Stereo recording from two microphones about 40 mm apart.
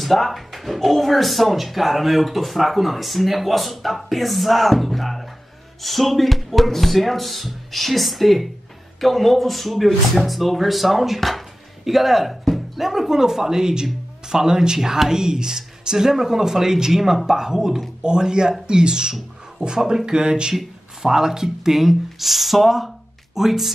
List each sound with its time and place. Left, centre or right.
0.0 s speech: centre
19.8 s speech: centre
20.1 s speech: centre